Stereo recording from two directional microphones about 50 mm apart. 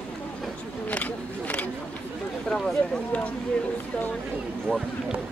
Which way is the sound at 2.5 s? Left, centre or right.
Centre.